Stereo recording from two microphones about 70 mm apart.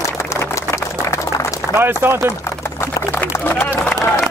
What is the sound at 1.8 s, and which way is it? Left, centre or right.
Speech, right.